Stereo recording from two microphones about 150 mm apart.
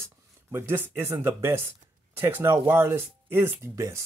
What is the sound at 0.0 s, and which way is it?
Speech, 15° right (ahead or behind).